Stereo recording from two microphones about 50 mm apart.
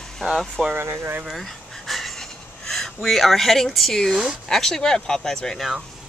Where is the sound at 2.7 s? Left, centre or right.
Centre.